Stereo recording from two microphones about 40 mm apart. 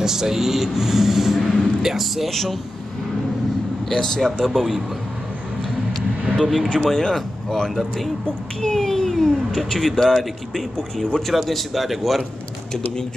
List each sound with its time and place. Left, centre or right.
0.0 s speech: centre
3.9 s speech: centre
4.5 s a man's voice: centre
6.5 s a man's voice: centre
6.9 s a child's voice: centre
10.8 s speech: centre
11.1 s a man's voice: centre